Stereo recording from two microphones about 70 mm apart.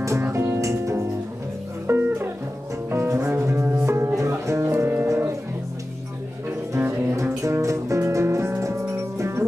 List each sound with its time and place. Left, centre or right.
0.2 s music: right
0.6 s music: right
1.9 s music: right
2.9 s double bass: right
3.8 s music: right
6.7 s music: right